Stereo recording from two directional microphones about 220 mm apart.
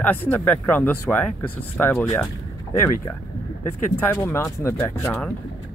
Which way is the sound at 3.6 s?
10° left (ahead or behind).